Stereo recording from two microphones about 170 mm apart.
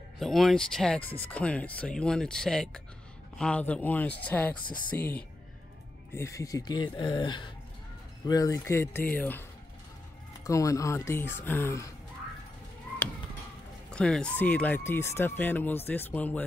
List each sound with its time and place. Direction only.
0.2 s speech: centre (ahead or behind)
10.4 s speech: 20° left (ahead or behind)
13.8 s speech: 5° left (ahead or behind)